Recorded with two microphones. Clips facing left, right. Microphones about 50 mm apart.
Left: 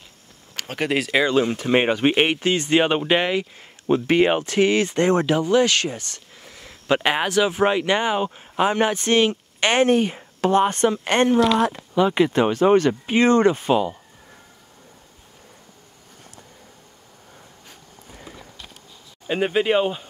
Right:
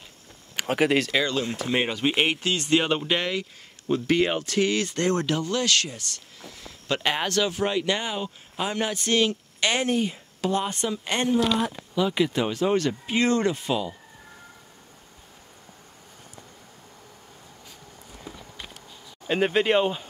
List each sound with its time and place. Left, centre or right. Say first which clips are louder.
0.6 s a sound: right 4 dB; centre
0.8 s speech: left 1 dB; centre
1.1 s speech: left 6 dB; centre
1.4 s speech: left 6 dB; left
2.4 s speech: left 4 dB; left
7.5 s speech: left 6 dB; left
19.2 s speech: left 2 dB; centre